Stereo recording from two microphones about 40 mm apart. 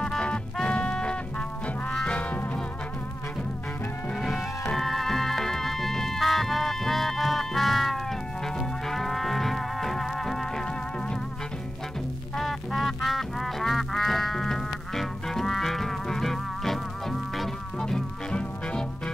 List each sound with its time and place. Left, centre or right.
0.2 s music: left
2.0 s music: left
4.1 s music: centre
12.4 s music: centre
17.7 s music: centre